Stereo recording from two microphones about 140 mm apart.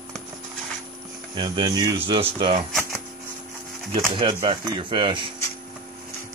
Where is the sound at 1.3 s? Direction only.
35° right (ahead or behind).